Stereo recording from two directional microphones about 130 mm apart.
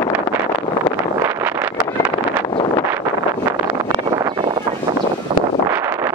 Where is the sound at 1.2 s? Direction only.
15° right (ahead or behind).